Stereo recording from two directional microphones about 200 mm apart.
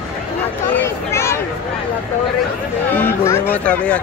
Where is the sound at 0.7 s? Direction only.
15° left (ahead or behind).